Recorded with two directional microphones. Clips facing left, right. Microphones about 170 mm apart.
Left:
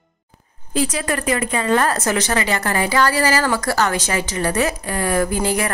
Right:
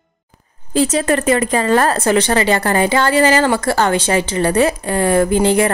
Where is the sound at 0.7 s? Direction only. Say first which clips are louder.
Right 6 dB; 30° right (ahead or behind).